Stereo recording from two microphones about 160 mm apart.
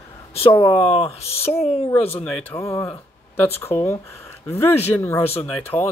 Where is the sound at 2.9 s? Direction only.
10° left (ahead or behind).